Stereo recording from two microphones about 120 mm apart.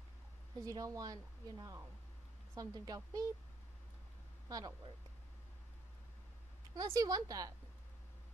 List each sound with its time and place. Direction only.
0.6 s a woman's voice: 30° right (ahead or behind)
4.5 s speech: 30° right (ahead or behind)
6.7 s a woman's voice: 30° right (ahead or behind)